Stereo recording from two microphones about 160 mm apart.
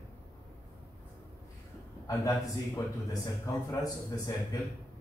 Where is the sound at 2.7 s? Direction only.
20° left (ahead or behind).